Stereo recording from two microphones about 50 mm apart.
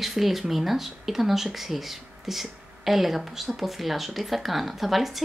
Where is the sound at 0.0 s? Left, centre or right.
Centre.